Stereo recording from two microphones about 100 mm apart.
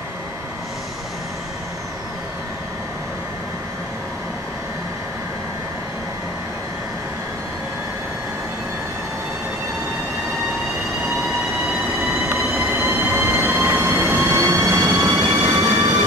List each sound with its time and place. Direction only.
11.6 s train: 5° right (ahead or behind); by 16.0 s 35° right (ahead or behind)